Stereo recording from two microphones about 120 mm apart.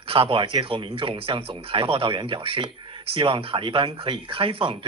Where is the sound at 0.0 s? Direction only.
50° right (ahead or behind).